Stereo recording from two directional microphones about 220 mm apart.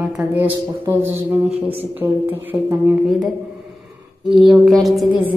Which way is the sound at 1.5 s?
25° right (ahead or behind).